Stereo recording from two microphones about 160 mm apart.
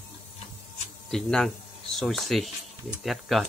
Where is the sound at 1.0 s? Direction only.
5° left (ahead or behind).